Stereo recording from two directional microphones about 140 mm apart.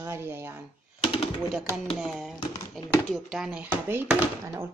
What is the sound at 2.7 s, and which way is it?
Speech, centre (ahead or behind).